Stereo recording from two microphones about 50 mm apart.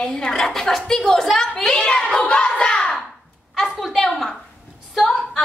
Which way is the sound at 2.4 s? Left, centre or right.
Centre.